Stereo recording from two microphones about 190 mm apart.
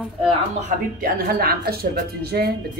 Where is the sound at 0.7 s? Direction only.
50° right (ahead or behind).